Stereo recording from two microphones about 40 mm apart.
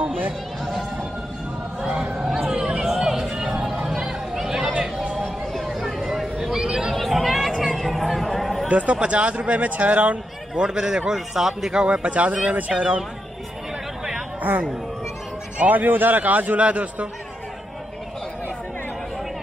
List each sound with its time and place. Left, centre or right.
1.8 s a sound: centre
2.9 s a sound: centre
3.9 s chatter: centre
5.7 s a sound: centre
6.4 s chatter: centre
6.9 s a sound: centre
8.6 s speech: right
10.5 s a man's voice: centre
11.1 s a man's voice: centre
11.8 s speech: right
12.1 s speech: right
14.5 s speech: right
15.7 s a man's voice: right